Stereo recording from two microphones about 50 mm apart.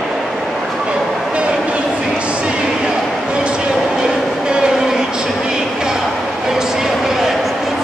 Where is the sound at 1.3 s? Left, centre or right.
Right.